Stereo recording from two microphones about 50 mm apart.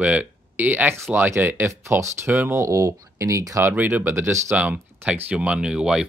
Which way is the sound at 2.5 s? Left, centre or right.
Right.